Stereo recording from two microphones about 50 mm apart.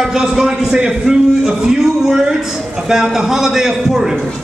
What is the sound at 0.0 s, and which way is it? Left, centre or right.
A man's voice, centre.